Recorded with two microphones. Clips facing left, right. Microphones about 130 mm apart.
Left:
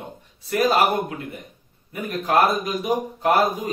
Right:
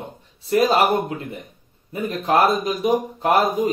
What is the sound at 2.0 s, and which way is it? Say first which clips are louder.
Speech: right 1 dB; 25° right (ahead or behind).